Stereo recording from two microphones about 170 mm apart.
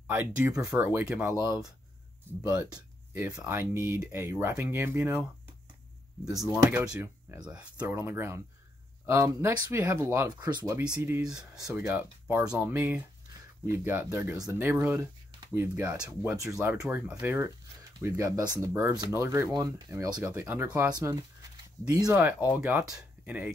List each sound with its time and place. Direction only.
0.0 s speech: 15° right (ahead or behind)
2.4 s speech: 15° right (ahead or behind)
6.5 s speech: 10° right (ahead or behind)
10.8 s speech: 10° right (ahead or behind)
11.6 s speech: 15° right (ahead or behind)